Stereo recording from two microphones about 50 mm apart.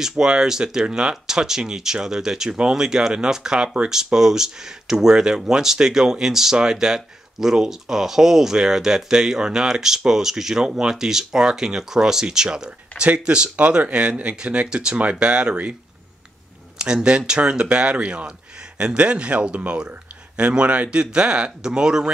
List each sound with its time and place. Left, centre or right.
0.0 s speech: centre
3.9 s speech: centre
16.7 s speech: centre